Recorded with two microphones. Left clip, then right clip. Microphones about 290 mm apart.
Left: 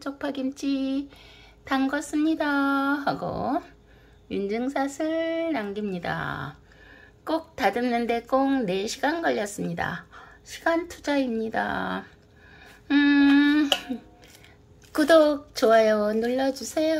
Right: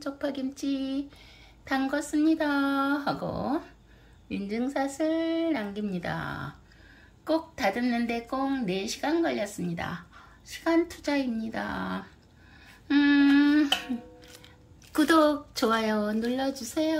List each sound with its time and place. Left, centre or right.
0.0 s speech: centre
14.9 s speech: centre